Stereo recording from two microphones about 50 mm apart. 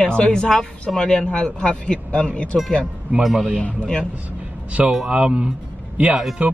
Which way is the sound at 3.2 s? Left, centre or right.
Centre.